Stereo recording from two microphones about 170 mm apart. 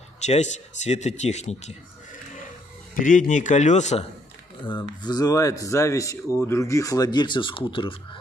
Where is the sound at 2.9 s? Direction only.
50° left (ahead or behind).